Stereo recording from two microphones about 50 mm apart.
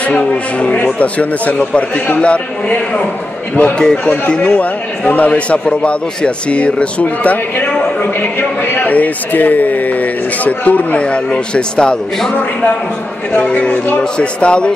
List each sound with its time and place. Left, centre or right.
0.0 s a man's voice: left
4.4 s a man's voice: left
13.3 s a man's voice: left
14.1 s speech: left